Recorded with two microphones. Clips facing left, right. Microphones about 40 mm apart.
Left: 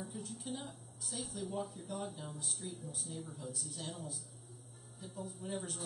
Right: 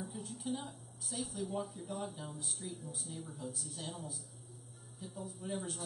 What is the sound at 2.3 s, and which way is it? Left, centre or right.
Speech, centre.